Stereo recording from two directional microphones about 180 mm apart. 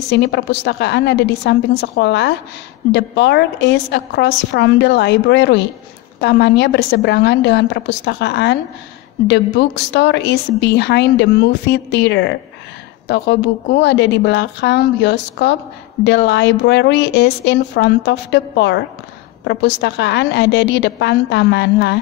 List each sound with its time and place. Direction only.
0.1 s a woman's voice: 70° left (ahead or behind)